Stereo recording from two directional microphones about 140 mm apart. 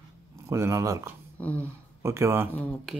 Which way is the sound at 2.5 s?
10° left (ahead or behind).